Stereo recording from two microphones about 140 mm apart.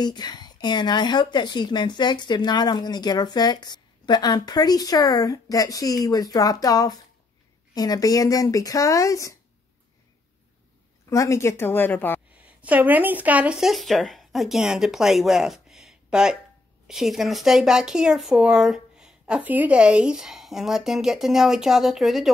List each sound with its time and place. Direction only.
0.0 s speech: 30° left (ahead or behind)
11.1 s a woman's voice: 20° left (ahead or behind)
12.4 s speech: 10° right (ahead or behind)